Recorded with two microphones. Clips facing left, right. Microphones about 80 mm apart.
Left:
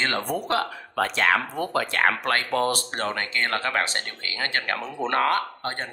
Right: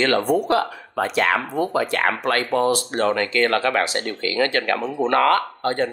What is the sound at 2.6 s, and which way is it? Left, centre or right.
Speech, right.